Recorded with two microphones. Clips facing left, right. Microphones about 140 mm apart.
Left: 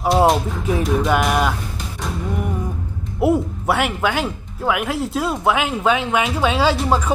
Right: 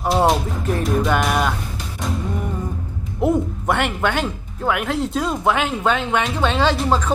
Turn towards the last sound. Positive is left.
turn(degrees=10)  # may be behind; listen again after turning